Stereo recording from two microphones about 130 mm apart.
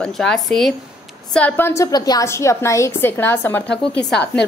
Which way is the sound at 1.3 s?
15° left (ahead or behind).